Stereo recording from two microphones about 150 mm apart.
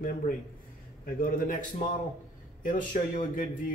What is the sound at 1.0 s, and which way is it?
Speech, 65° left (ahead or behind).